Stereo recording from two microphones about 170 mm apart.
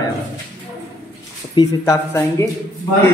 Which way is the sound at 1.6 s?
15° left (ahead or behind).